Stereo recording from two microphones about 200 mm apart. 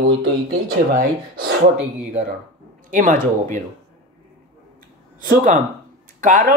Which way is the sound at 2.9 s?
40° right (ahead or behind).